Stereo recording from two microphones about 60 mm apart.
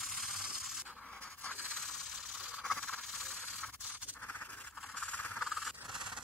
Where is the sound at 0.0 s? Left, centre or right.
Centre.